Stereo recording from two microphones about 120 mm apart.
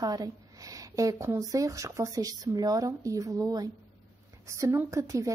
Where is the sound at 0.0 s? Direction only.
30° right (ahead or behind).